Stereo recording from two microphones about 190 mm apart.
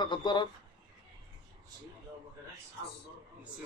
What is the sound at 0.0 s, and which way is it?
Speech, 25° left (ahead or behind).